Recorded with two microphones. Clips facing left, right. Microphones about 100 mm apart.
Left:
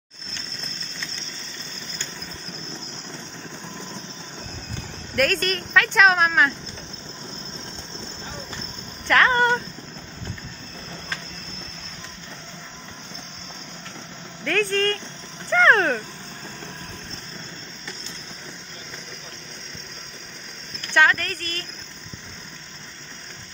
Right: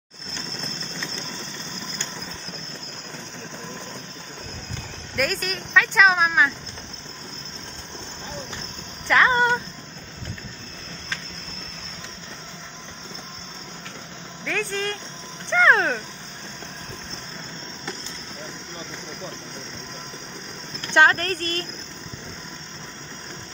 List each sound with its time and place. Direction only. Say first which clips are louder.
5.1 s speech: left 4 dB; centre (ahead or behind)
9.0 s a sound: even; 10° right (ahead or behind)
14.4 s speech: left 5 dB; 5° right (ahead or behind)
20.9 s speech: right 2 dB; 30° right (ahead or behind)